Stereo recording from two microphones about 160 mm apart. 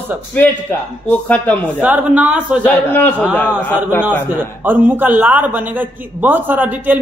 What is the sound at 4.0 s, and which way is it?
A man's voice, 10° right (ahead or behind).